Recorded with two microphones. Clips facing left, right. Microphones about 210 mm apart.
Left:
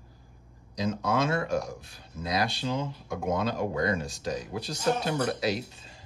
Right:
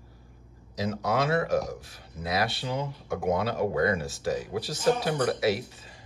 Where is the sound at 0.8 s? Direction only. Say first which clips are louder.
Even; 25° left (ahead or behind).